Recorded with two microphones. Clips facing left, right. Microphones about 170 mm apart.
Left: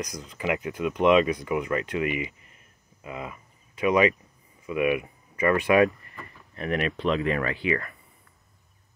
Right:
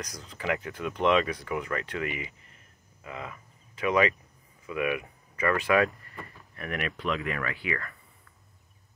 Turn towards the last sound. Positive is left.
turn(degrees=20)  # may be behind; listen again after turning